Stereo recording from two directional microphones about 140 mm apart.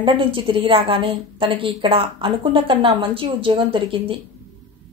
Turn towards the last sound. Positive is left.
turn(degrees=-40)  # may be behind; listen again after turning